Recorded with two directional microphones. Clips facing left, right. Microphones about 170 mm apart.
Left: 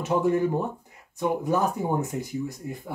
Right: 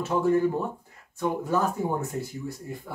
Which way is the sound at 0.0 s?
20° left (ahead or behind).